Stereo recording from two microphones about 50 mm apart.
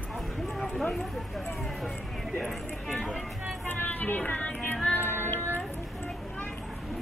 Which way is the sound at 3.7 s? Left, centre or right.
Left.